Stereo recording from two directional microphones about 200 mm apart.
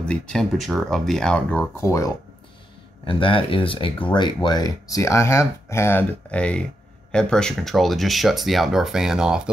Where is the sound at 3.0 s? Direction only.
25° left (ahead or behind).